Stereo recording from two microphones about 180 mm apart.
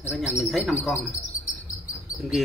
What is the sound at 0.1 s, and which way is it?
Speech, 5° right (ahead or behind).